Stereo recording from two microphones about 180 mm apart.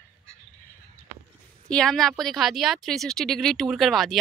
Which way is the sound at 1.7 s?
5° left (ahead or behind).